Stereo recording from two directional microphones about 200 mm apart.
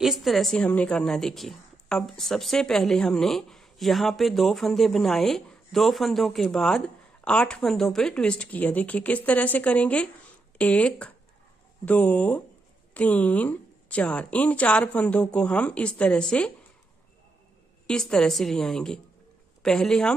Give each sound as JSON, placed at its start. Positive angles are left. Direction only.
{"t": 0.0, "sound": "a woman's voice", "side_deg": 0}
{"t": 17.8, "sound": "a woman's voice", "side_deg": 5}